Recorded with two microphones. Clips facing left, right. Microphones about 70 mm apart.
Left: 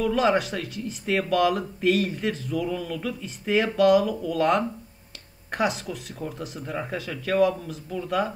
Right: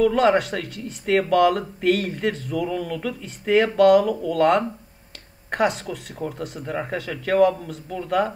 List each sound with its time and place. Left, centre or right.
0.0 s speech: centre
0.5 s speech: centre
0.8 s speech: centre